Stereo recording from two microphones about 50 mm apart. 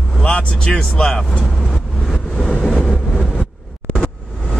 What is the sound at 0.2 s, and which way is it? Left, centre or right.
Speech, left.